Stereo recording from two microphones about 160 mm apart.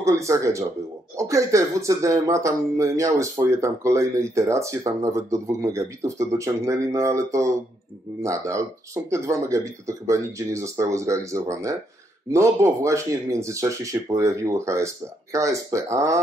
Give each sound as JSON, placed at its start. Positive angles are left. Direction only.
{"t": 0.0, "sound": "speech", "side_deg": -20}